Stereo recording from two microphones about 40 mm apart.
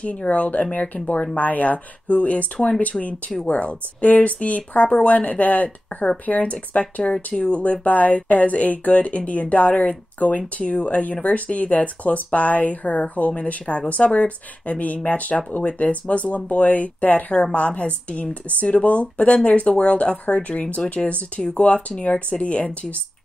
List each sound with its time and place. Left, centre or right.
0.0 s speech: left
17.3 s speech: left
21.4 s speech: left
21.7 s speech: left